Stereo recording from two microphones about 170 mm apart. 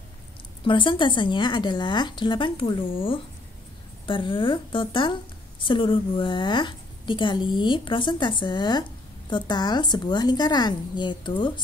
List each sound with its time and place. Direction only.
0.7 s a woman's voice: 30° left (ahead or behind)